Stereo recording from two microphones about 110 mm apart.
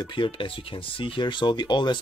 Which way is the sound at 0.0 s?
50° left (ahead or behind).